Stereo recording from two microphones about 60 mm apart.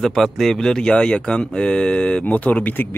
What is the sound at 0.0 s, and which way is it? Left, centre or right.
Speech, centre.